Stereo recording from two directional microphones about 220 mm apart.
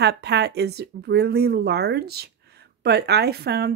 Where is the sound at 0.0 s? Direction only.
50° right (ahead or behind).